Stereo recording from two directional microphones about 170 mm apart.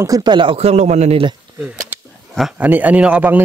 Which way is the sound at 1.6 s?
10° right (ahead or behind).